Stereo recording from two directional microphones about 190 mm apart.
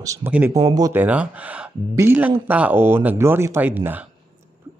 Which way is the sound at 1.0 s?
5° right (ahead or behind).